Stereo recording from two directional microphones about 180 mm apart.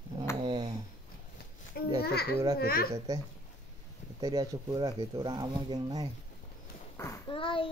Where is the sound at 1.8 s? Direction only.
60° left (ahead or behind).